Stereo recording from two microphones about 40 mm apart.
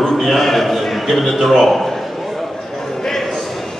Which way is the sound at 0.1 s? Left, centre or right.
Centre.